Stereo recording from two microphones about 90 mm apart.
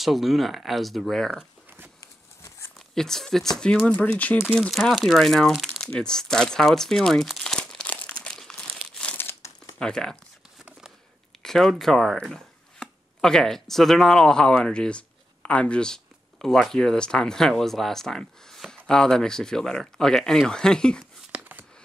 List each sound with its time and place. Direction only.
0.0 s speech: centre (ahead or behind)
2.9 s speech: 5° left (ahead or behind)
4.6 s speech: centre (ahead or behind)
7.9 s crumpling: 15° left (ahead or behind)
9.1 s crumpling: 25° left (ahead or behind)
9.8 s speech: 10° left (ahead or behind)
11.4 s speech: 5° left (ahead or behind)
21.3 s a sound: 20° right (ahead or behind)